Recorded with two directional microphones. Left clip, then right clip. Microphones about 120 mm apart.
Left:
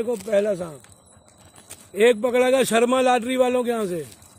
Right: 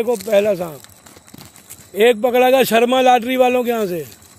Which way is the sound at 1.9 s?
5° left (ahead or behind).